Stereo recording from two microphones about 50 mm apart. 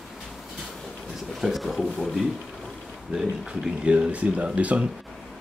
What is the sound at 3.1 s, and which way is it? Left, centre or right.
Speech, centre.